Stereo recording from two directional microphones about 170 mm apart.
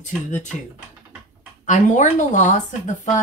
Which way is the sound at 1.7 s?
45° left (ahead or behind).